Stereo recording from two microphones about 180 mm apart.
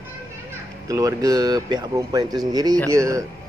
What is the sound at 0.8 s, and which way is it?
A man's voice, 20° right (ahead or behind).